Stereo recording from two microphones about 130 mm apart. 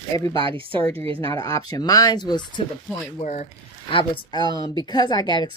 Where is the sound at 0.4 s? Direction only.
40° right (ahead or behind).